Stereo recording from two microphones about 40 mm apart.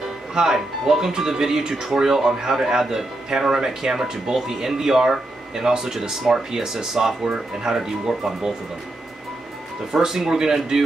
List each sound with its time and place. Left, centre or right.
0.3 s speech: centre
9.9 s speech: centre